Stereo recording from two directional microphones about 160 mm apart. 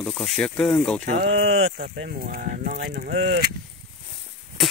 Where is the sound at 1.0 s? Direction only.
45° right (ahead or behind).